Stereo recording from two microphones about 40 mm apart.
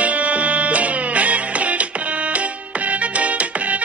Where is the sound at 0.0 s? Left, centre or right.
Right.